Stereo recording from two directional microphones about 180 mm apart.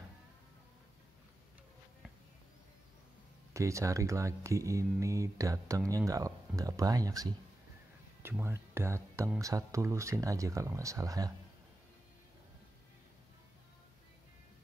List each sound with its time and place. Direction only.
3.5 s speech: 15° right (ahead or behind)